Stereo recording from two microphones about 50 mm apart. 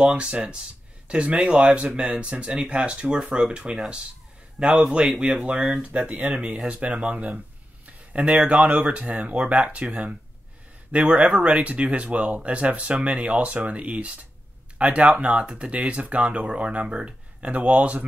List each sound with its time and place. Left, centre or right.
0.0 s speech: right